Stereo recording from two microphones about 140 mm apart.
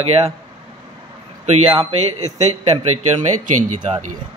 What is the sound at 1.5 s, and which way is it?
Speech, 50° right (ahead or behind).